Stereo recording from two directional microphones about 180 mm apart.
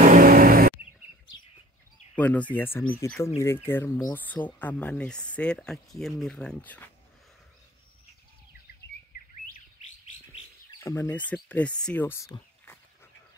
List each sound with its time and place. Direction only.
0.0 s vehicle: 50° right (ahead or behind)
2.1 s speech: 10° left (ahead or behind)
10.8 s speech: 15° left (ahead or behind)